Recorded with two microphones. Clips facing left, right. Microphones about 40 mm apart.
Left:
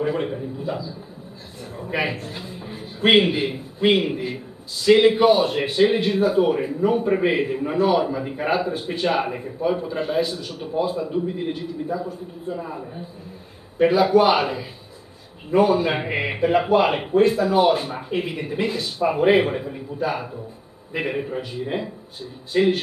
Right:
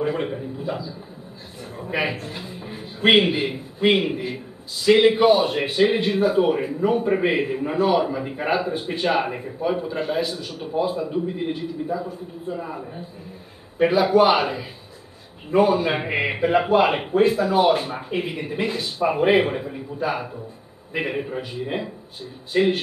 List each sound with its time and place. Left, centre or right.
0.0 s a man's voice: centre
15.5 s a man's voice: centre